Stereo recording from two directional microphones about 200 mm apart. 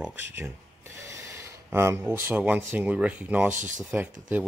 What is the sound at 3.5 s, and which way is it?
Speech, 40° right (ahead or behind).